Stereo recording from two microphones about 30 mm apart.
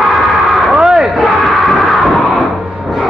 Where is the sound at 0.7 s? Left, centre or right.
Centre.